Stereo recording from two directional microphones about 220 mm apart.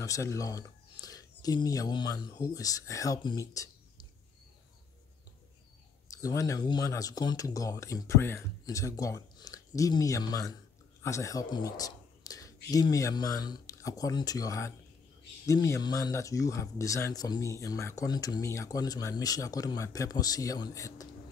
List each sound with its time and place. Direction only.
0.0 s speech: 15° left (ahead or behind)
6.0 s speech: 15° left (ahead or behind)